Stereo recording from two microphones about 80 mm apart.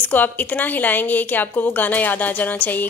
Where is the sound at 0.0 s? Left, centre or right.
Left.